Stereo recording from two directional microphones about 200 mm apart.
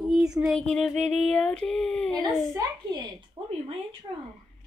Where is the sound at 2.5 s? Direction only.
15° right (ahead or behind).